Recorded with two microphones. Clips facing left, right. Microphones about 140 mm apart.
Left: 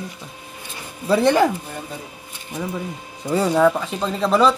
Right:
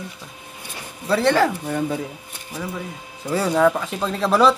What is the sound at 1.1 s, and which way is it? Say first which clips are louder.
Speech: left 2 dB; 20° left (ahead or behind).